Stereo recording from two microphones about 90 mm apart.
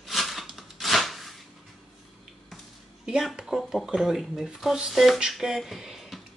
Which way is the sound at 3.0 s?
5° right (ahead or behind).